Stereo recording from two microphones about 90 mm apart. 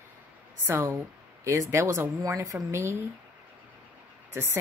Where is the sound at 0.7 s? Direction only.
30° right (ahead or behind).